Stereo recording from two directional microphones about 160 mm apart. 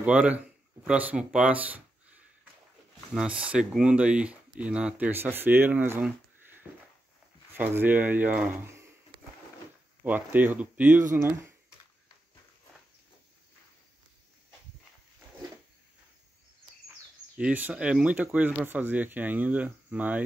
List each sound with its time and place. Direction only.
0.0 s speech: 10° right (ahead or behind)
7.5 s speech: 10° right (ahead or behind)
10.0 s speech: 10° right (ahead or behind)
17.4 s speech: 10° right (ahead or behind)